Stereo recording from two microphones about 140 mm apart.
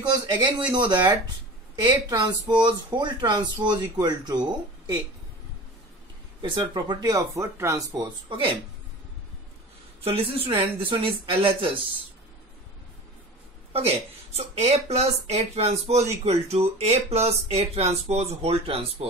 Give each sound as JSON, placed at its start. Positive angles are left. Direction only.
{"t": 0.0, "sound": "speech", "side_deg": -30}
{"t": 6.4, "sound": "speech", "side_deg": -35}
{"t": 10.0, "sound": "speech", "side_deg": -45}
{"t": 13.7, "sound": "speech", "side_deg": -45}